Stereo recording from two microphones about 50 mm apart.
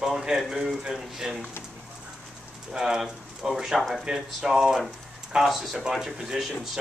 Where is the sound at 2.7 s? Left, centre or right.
Centre.